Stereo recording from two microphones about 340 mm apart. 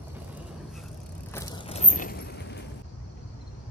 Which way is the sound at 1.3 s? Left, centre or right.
Centre.